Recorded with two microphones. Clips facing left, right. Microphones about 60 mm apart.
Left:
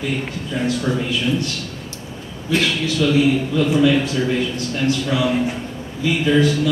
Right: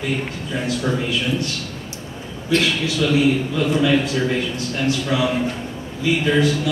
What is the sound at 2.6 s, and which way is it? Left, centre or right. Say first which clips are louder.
Speech: left 1 dB; centre.